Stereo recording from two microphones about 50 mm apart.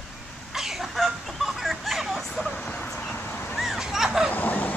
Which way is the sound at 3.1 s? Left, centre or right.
Left.